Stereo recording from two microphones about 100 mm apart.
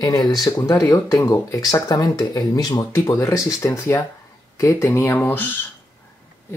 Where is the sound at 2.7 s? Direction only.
30° left (ahead or behind).